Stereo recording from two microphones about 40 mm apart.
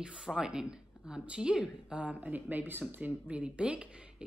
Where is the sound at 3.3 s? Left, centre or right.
Right.